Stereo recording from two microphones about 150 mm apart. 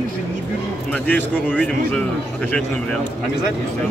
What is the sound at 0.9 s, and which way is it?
Speech, 10° left (ahead or behind).